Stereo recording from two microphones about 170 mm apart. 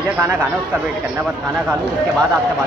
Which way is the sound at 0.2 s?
10° right (ahead or behind).